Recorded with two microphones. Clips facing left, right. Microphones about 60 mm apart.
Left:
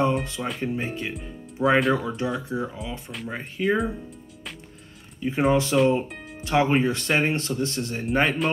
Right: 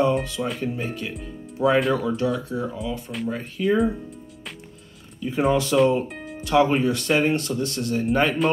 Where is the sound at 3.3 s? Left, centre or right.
Left.